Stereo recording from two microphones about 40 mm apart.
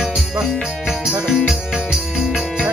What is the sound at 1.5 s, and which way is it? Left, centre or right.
Music, centre.